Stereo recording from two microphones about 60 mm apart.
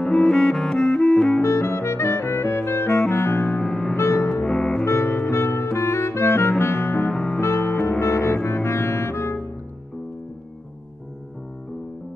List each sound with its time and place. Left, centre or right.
0.0 s music: centre
0.8 s clarinet: centre
1.4 s music: left
3.6 s music: centre
3.9 s music: left
4.3 s music: centre
4.8 s music: left